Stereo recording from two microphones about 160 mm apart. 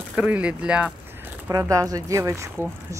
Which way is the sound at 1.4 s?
20° right (ahead or behind).